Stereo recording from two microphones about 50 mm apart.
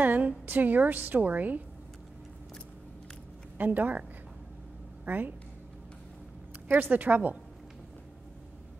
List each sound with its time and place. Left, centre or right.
0.0 s a sound: right
0.5 s a woman's voice: right
3.5 s speech: right
5.0 s speech: right
6.7 s a woman's voice: right